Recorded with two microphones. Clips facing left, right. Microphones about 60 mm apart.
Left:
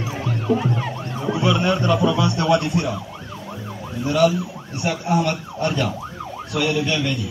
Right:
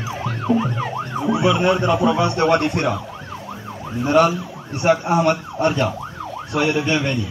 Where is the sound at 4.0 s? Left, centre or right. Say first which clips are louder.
Right 2 dB; right.